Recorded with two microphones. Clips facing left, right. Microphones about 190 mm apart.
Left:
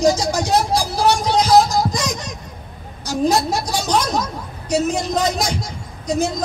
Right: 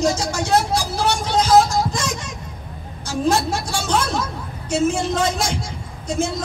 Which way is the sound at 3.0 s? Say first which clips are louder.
Left 2 dB; 35° left (ahead or behind).